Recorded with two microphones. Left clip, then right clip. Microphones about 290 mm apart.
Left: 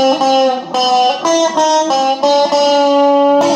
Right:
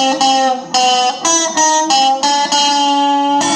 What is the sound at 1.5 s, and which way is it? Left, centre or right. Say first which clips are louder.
Music: even; right.